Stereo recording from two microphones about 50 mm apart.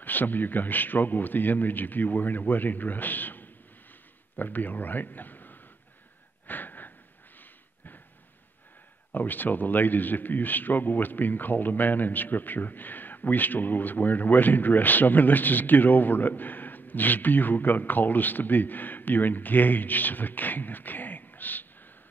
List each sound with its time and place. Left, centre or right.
0.0 s a man's voice: left
6.4 s a sound: left
9.1 s a man's voice: left